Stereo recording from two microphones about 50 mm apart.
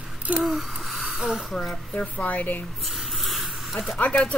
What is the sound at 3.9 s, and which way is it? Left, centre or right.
Speech, left.